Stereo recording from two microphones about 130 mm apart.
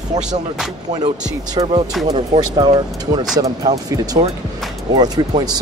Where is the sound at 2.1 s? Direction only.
35° right (ahead or behind).